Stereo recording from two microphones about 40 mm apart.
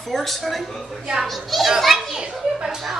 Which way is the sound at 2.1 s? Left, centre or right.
Centre.